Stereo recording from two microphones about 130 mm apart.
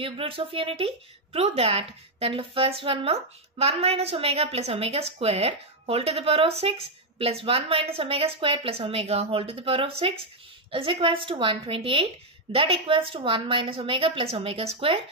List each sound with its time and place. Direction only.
0.0 s a woman's voice: 45° right (ahead or behind)